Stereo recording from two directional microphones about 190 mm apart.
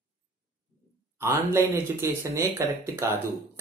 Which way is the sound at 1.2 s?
15° right (ahead or behind).